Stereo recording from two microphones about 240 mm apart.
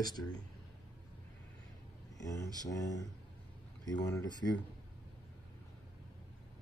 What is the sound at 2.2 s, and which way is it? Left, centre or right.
Speech, centre.